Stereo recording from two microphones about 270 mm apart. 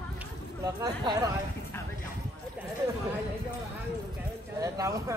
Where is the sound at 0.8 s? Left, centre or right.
Centre.